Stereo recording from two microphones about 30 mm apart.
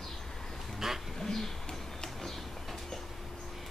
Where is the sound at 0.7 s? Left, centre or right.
Centre.